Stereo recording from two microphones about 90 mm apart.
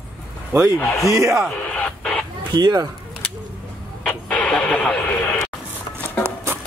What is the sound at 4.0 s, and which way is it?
Radio, 10° left (ahead or behind).